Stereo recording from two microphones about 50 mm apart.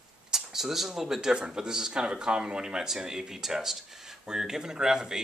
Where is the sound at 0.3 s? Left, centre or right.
Centre.